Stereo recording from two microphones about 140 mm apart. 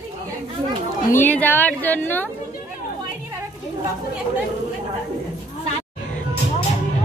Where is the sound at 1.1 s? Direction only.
15° left (ahead or behind).